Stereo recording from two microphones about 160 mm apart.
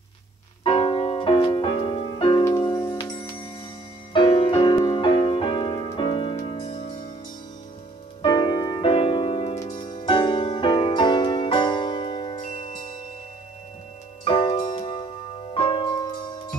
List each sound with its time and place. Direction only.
0.7 s music: 35° left (ahead or behind)
8.2 s music: 30° left (ahead or behind)
12.4 s music: 50° left (ahead or behind)
14.2 s music: 30° left (ahead or behind)